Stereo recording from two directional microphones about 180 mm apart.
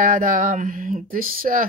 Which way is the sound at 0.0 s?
50° right (ahead or behind).